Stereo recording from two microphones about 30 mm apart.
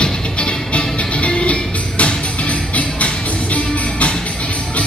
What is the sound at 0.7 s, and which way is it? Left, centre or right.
Music, left.